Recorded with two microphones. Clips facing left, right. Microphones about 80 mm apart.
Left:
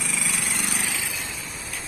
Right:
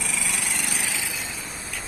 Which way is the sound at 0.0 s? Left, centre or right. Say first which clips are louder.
Even; centre.